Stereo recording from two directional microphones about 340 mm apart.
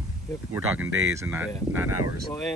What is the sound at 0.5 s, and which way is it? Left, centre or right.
Speech, centre.